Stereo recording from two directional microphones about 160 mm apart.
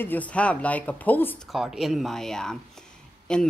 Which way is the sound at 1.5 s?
Centre (ahead or behind).